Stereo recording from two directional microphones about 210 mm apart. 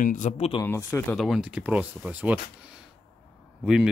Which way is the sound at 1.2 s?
5° right (ahead or behind).